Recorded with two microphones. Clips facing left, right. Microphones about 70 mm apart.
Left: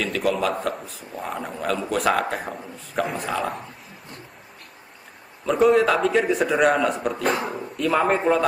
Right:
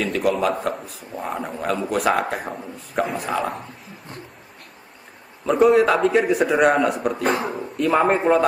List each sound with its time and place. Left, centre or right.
0.0 s a man's voice: centre
5.5 s a man's voice: centre
7.8 s a man's voice: centre